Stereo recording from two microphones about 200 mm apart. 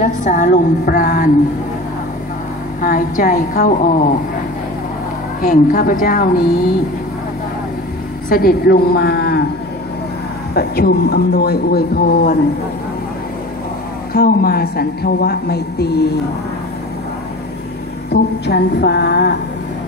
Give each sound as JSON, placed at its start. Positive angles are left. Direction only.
{"t": 0.0, "sound": "speech", "side_deg": 40}
{"t": 2.8, "sound": "speech", "side_deg": 45}
{"t": 5.4, "sound": "speech", "side_deg": 45}
{"t": 8.3, "sound": "speech", "side_deg": 50}
{"t": 10.5, "sound": "speech", "side_deg": 50}
{"t": 14.1, "sound": "speech", "side_deg": 50}
{"t": 18.1, "sound": "speech", "side_deg": 55}